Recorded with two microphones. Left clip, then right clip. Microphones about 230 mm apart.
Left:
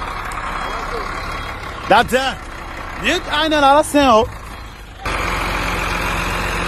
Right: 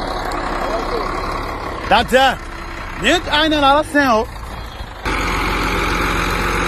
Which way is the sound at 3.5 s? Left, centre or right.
Left.